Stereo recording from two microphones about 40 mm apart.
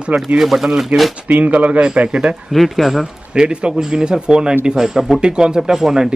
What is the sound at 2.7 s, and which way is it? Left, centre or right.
Speech, centre.